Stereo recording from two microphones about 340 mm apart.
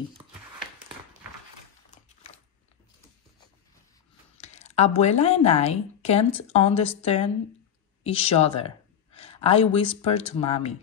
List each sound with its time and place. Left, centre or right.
4.4 s a woman's voice: centre
8.0 s a sound: centre
9.8 s a woman's voice: centre